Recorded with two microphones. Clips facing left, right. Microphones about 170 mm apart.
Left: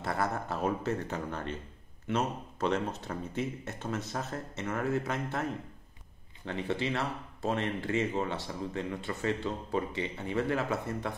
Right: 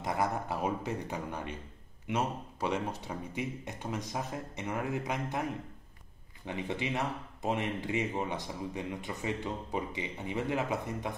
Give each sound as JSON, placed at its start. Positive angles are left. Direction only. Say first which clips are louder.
{"t": 0.0, "sound": "speech", "louder": "even", "side_deg": -15}